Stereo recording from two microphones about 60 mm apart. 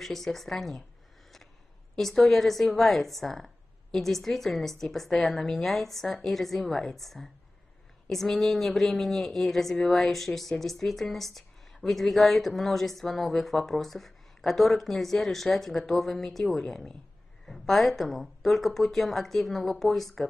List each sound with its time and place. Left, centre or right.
0.0 s a woman's voice: centre
2.0 s a woman's voice: centre